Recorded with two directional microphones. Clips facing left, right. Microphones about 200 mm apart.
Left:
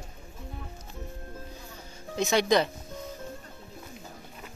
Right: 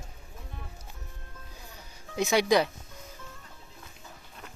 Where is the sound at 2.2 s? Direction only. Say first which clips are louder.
Even; 10° right (ahead or behind).